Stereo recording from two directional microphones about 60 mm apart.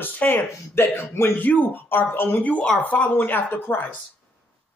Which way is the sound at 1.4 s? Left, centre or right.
Left.